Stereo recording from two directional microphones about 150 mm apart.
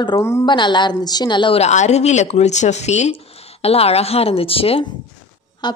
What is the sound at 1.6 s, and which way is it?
Speech, 50° left (ahead or behind).